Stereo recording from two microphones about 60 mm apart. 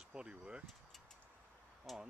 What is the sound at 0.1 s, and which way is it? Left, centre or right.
Speech, centre.